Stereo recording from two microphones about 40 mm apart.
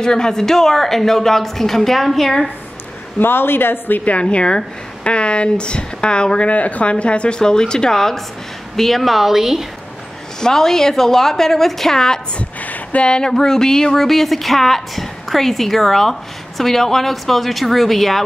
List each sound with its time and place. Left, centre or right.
0.0 s a woman's voice: centre
3.2 s speech: left
4.0 s speech: left
6.5 s speech: left; by 9.7 s centre
10.4 s a woman's voice: centre
12.4 s a sound: left
13.1 s speech: centre